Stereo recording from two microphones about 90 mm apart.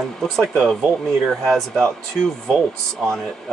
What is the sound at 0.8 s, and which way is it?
Speech, 5° left (ahead or behind).